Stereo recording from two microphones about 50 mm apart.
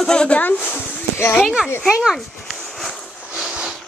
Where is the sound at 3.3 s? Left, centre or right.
Centre.